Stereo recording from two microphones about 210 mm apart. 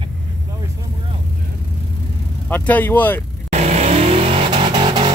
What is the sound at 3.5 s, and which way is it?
Vehicle, 30° right (ahead or behind).